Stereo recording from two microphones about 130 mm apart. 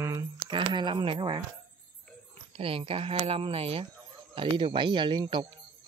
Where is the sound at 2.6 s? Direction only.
45° right (ahead or behind).